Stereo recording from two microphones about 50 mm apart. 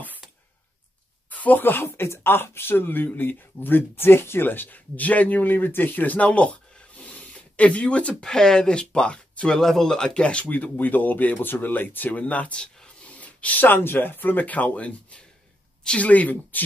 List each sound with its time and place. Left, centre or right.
1.3 s speech: left
7.0 s rub: left
8.2 s speech: centre
9.6 s speech: centre
10.5 s speech: left
13.7 s speech: left